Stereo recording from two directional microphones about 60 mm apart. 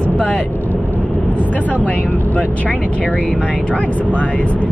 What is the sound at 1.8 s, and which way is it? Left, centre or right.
Speech, left.